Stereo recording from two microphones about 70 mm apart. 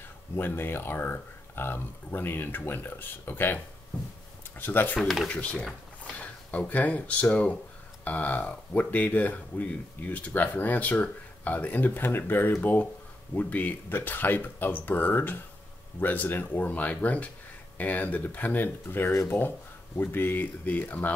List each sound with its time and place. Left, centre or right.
0.4 s speech: left
5.0 s speech: centre
5.3 s speech: centre